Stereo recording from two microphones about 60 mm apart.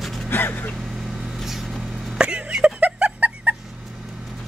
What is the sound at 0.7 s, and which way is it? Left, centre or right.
Vehicle, centre.